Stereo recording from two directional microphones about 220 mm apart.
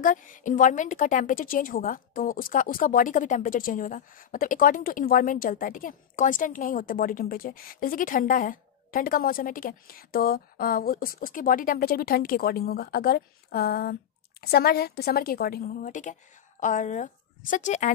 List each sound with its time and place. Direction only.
0.0 s a woman's voice: 35° left (ahead or behind)